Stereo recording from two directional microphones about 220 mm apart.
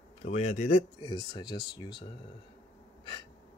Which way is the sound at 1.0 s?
20° left (ahead or behind).